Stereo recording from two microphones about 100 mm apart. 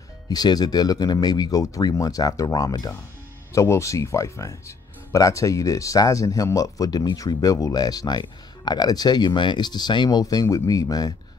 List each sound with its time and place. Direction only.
0.3 s speech: 40° left (ahead or behind)
3.5 s speech: 30° left (ahead or behind)